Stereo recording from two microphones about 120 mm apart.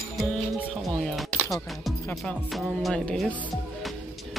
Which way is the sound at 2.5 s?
Centre (ahead or behind).